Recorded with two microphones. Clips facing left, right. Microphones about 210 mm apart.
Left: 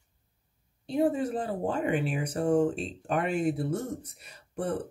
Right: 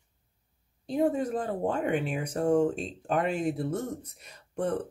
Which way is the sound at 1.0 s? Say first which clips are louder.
Even; 5° left (ahead or behind).